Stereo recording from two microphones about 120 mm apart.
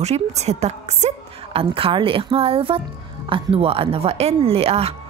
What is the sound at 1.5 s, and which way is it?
A woman's voice, 50° right (ahead or behind).